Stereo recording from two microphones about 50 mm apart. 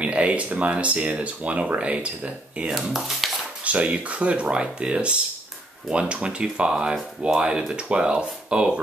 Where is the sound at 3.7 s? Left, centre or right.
Right.